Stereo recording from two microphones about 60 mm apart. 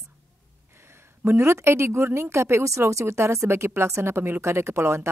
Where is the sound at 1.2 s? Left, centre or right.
Right.